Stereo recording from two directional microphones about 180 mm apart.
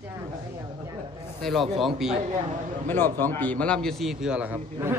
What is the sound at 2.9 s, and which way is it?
A man's voice, 10° left (ahead or behind).